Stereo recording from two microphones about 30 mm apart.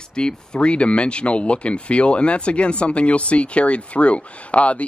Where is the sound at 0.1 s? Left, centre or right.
Left.